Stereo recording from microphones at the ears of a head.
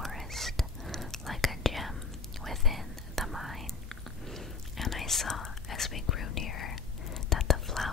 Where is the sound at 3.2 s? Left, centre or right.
Centre.